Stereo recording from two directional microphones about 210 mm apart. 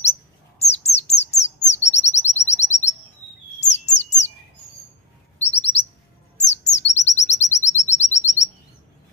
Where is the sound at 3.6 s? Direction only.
35° left (ahead or behind).